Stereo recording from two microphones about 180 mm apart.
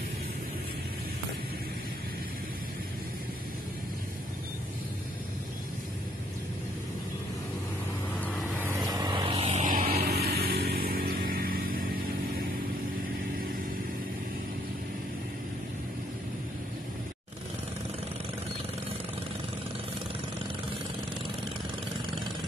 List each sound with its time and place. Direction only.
8.5 s vehicle: 15° right (ahead or behind); by 11.8 s 55° right (ahead or behind)